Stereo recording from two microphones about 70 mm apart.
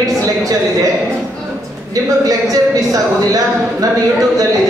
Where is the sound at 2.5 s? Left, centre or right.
Right.